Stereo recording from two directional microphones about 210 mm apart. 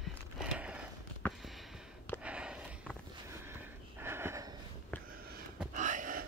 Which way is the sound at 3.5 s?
10° right (ahead or behind).